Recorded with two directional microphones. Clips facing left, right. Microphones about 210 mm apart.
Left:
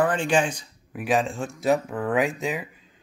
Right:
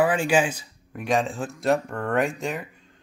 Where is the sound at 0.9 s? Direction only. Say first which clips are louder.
Even; 5° left (ahead or behind).